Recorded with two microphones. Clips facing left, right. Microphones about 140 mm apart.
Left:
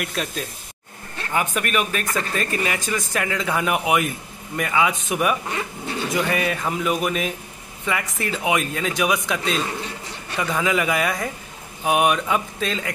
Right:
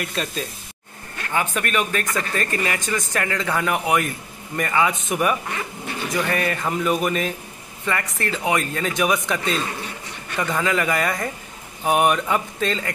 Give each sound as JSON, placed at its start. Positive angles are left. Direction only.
{"t": 0.0, "sound": "speech", "side_deg": 0}